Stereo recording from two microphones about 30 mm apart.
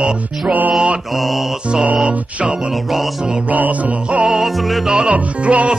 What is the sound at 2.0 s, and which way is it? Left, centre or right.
Music, right.